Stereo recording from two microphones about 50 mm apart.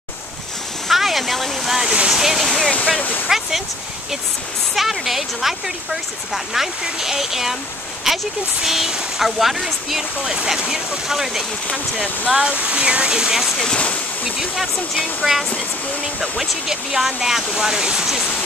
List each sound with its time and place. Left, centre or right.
0.8 s a sound: centre
2.0 s speech: centre
3.3 s a sound: centre
4.7 s speech: centre
8.6 s speech: centre
12.3 s speech: centre
15.2 s speech: centre